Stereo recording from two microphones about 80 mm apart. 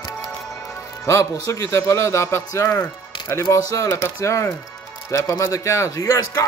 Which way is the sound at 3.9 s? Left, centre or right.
Left.